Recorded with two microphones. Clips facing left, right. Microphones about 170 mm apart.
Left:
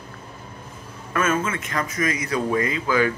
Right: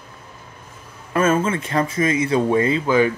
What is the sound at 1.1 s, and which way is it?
Speech, 30° right (ahead or behind).